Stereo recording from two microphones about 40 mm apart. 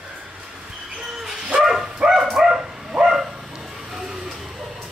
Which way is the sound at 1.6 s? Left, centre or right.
Centre.